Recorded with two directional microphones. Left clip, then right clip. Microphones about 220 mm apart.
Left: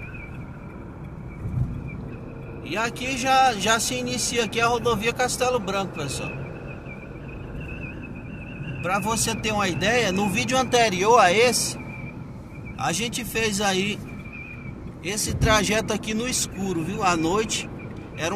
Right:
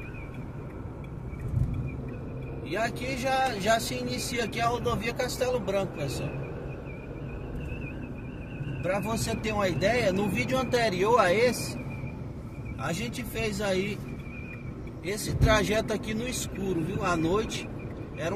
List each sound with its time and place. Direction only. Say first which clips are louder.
2.7 s speech: left 4 dB; 10° left (ahead or behind)
8.8 s speech: left 6 dB; 10° left (ahead or behind)
12.7 s speech: left 8 dB; 15° left (ahead or behind)
15.0 s speech: left 4 dB; 10° left (ahead or behind)